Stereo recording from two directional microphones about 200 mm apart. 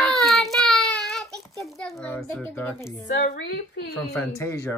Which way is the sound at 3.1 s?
60° left (ahead or behind).